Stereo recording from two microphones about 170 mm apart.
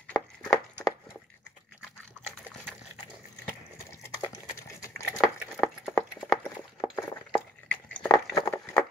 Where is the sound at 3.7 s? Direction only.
15° left (ahead or behind).